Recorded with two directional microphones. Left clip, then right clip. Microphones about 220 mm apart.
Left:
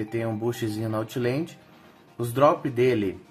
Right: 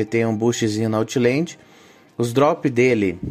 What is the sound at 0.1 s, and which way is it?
Speech, 30° right (ahead or behind).